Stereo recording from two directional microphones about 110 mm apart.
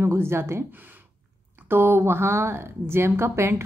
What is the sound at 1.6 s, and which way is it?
A woman's voice, 20° right (ahead or behind).